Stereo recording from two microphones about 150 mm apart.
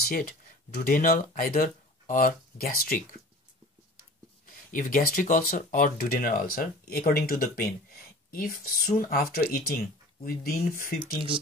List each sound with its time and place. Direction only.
0.0 s speech: 75° left (ahead or behind)
4.5 s speech: 65° left (ahead or behind); by 9.8 s 85° left
10.2 s speech: 70° left (ahead or behind)